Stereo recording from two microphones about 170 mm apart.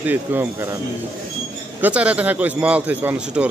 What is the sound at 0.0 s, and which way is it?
Speech, 10° right (ahead or behind).